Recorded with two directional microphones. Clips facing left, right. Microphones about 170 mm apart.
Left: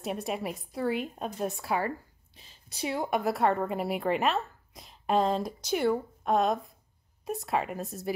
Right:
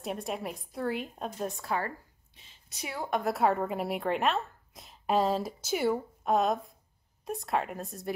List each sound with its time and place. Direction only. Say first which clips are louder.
0.0 s speech: left 2 dB; centre (ahead or behind)
2.3 s a woman's voice: left 4 dB; 35° left (ahead or behind)
3.0 s speech: even; 5° left (ahead or behind)